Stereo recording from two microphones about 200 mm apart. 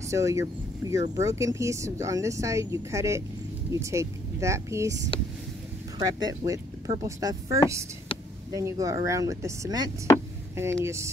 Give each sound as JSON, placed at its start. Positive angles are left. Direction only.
{"t": 0.1, "sound": "speech", "side_deg": -15}
{"t": 5.9, "sound": "speech", "side_deg": -20}